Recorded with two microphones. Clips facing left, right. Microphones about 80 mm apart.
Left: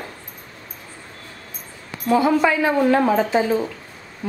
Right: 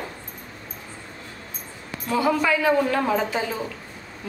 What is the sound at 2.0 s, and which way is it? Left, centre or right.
A woman's voice, left.